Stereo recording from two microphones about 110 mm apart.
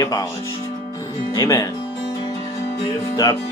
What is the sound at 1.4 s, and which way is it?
Speech, 30° left (ahead or behind).